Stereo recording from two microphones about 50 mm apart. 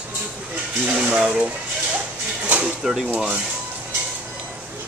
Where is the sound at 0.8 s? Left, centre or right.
Centre.